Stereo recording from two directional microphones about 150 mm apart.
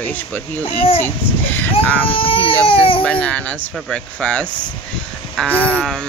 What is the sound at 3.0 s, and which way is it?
Speech, 10° left (ahead or behind).